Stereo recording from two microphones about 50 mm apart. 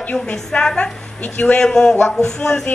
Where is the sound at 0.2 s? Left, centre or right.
Centre.